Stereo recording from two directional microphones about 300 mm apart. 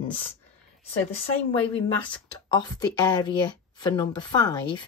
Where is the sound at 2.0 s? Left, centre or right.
Centre.